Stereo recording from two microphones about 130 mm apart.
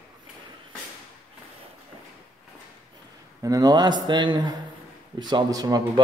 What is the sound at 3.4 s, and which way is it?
A man's voice, 30° right (ahead or behind).